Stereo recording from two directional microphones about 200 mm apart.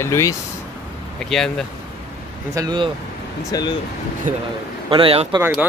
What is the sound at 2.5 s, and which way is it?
Speech, 20° right (ahead or behind).